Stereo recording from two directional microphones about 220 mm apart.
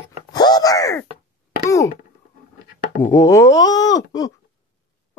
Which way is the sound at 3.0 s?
10° left (ahead or behind).